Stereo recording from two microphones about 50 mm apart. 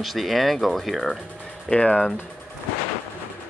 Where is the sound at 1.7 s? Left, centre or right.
Centre.